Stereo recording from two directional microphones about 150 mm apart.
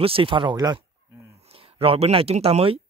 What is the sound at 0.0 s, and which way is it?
Speech, 35° right (ahead or behind).